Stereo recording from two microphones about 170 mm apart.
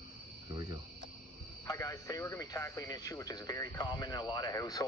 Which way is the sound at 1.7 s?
20° left (ahead or behind).